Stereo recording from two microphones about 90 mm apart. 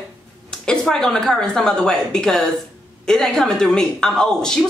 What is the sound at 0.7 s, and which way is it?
Speech, 5° left (ahead or behind).